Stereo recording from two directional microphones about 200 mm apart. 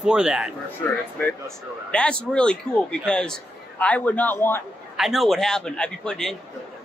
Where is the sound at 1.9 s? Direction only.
5° left (ahead or behind).